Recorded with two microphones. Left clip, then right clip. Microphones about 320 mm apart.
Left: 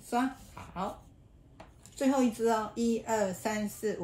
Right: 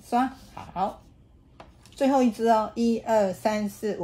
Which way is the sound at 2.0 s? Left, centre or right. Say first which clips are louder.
Right 6 dB; right.